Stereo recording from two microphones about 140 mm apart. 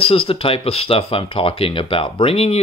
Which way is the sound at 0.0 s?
40° left (ahead or behind).